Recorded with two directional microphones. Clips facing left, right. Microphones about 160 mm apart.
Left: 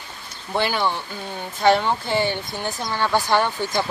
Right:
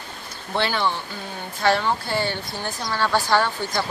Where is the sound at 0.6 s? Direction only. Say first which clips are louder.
Left 1 dB; 10° left (ahead or behind).